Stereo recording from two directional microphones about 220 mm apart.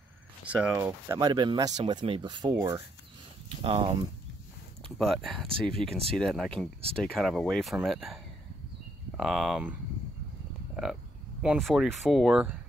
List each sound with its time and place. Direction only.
0.5 s speech: 5° right (ahead or behind); by 3.9 s 25° right (ahead or behind)
4.8 s speech: centre (ahead or behind)
11.4 s speech: centre (ahead or behind)